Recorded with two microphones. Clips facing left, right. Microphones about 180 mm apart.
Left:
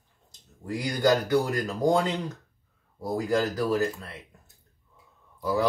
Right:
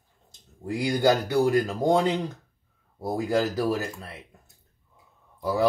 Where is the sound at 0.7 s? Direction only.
30° right (ahead or behind).